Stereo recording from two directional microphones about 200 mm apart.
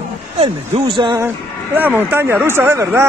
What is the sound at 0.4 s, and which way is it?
Speech, 30° right (ahead or behind).